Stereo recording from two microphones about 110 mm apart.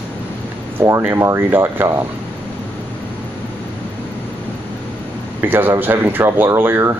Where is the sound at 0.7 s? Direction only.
25° right (ahead or behind).